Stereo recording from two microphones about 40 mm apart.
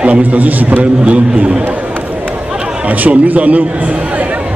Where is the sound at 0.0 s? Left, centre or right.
Right.